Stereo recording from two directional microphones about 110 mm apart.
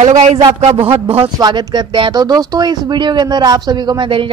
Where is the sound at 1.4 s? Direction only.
40° right (ahead or behind).